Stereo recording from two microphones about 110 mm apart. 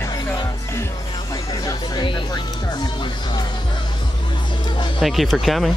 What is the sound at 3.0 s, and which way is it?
Speech, 45° left (ahead or behind).